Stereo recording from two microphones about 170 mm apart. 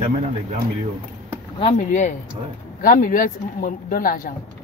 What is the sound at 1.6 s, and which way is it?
Speech, 45° left (ahead or behind).